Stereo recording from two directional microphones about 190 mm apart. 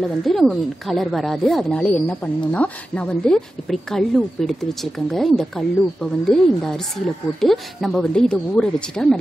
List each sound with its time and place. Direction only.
0.0 s speech: centre (ahead or behind)